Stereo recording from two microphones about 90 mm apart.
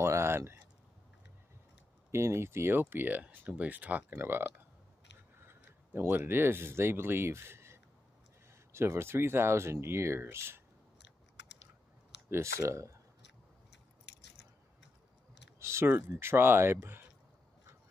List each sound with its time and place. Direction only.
0.0 s a sound: 30° right (ahead or behind)
2.0 s speech: 30° right (ahead or behind)
12.3 s speech: 30° right (ahead or behind)
15.6 s speech: 30° right (ahead or behind)